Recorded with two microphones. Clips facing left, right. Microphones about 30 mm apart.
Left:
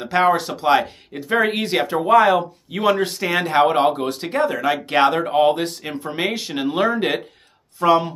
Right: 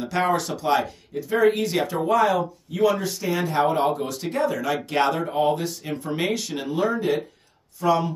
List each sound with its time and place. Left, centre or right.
0.0 s speech: left
6.7 s speech: left
7.8 s speech: left